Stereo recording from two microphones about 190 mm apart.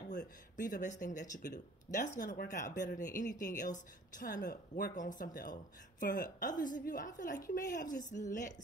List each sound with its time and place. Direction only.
0.6 s speech: 45° left (ahead or behind)
1.4 s speech: 60° left (ahead or behind)
2.1 s speech: 45° left (ahead or behind)